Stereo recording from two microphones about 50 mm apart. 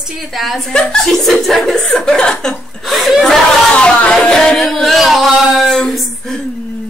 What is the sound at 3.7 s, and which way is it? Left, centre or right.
Music, left.